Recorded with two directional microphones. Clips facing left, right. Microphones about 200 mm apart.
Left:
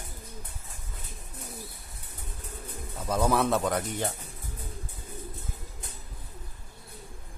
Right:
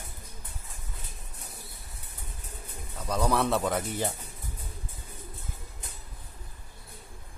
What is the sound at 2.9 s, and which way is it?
Speech, 5° left (ahead or behind).